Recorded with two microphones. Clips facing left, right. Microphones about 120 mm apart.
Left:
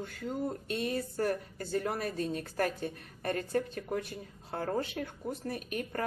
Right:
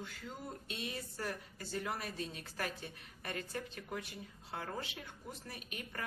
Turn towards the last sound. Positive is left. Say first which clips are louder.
# left 11 dB
turn(degrees=45)  # may be behind; listen again after turning